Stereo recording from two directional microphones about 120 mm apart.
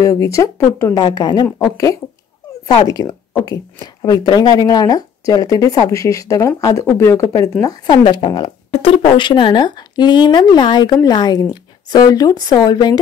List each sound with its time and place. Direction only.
0.0 s speech: 25° left (ahead or behind)
1.0 s speech: 35° left (ahead or behind)
3.1 s speech: 25° left (ahead or behind)
7.6 s speech: 40° left (ahead or behind)
8.7 s speech: 55° left (ahead or behind); by 13.0 s 35° left (ahead or behind)